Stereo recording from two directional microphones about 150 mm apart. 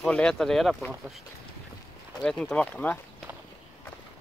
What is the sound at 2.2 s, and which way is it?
Speech, 5° left (ahead or behind).